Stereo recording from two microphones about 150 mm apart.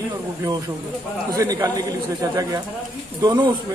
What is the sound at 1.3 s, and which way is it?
Speech, 25° right (ahead or behind).